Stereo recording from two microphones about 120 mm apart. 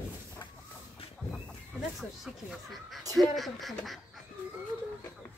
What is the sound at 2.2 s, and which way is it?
Speech, 5° right (ahead or behind).